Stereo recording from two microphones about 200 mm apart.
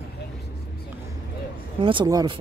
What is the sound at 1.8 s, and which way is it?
Speech, 25° right (ahead or behind).